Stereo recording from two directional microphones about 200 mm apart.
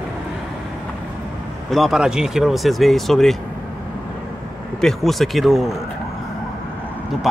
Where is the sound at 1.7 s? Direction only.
Centre (ahead or behind).